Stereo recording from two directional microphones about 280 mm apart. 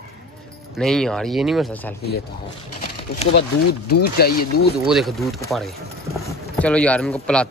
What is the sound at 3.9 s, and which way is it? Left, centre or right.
Speech, left.